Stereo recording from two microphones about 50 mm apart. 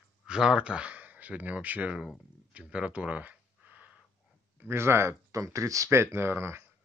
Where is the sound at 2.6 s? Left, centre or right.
Right.